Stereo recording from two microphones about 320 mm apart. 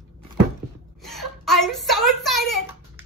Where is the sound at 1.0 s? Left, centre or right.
Centre.